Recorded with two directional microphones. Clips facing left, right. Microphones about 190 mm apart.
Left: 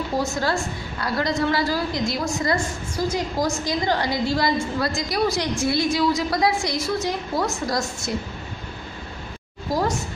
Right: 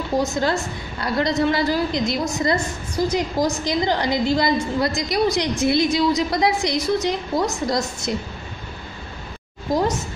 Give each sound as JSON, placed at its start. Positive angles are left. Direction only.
{"t": 0.2, "sound": "a woman's voice", "side_deg": -20}